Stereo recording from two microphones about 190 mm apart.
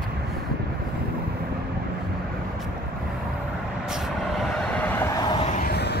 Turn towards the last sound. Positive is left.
turn(degrees=60)  # may be behind; listen again after turning